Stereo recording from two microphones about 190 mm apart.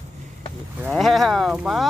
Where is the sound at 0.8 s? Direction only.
Centre (ahead or behind).